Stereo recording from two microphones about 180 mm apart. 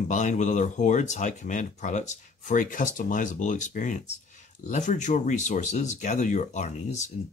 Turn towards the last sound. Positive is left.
turn(degrees=40)  # may be behind; listen again after turning